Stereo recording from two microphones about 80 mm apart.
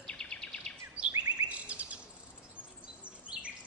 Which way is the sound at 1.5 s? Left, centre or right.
Centre.